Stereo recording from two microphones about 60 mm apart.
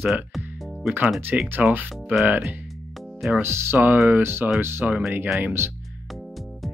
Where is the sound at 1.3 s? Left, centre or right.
Centre.